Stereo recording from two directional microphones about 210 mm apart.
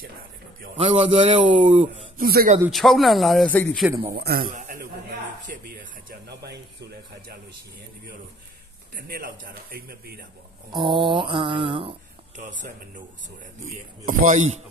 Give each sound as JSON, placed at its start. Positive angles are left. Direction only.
{"t": 0.7, "sound": "mantra", "side_deg": -25}
{"t": 2.1, "sound": "speech", "side_deg": -45}
{"t": 2.6, "sound": "speech", "side_deg": 0}
{"t": 4.1, "sound": "a man's voice", "side_deg": -45}
{"t": 5.4, "sound": "a sound", "side_deg": -40}
{"t": 8.9, "sound": "a man's voice", "side_deg": -45}
{"t": 10.7, "sound": "mantra", "side_deg": -25}
{"t": 13.7, "sound": "speech", "side_deg": -40}